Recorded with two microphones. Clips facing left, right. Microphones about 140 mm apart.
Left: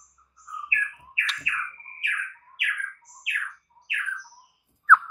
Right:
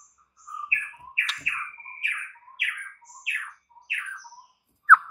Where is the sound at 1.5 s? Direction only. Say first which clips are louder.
Left 3 dB; 30° right (ahead or behind).